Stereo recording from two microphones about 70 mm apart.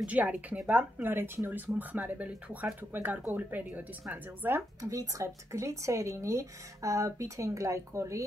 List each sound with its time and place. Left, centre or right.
0.0 s a woman's voice: centre
1.0 s speech: right
4.8 s speech: right